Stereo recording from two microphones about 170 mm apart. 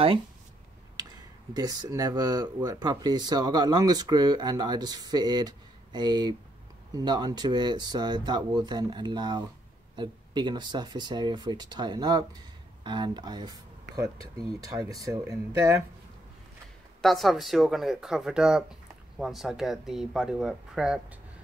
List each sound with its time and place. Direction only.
1.5 s speech: 20° right (ahead or behind)
17.0 s speech: centre (ahead or behind)